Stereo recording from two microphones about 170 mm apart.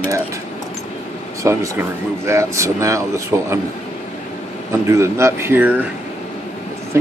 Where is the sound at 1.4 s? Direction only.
15° right (ahead or behind).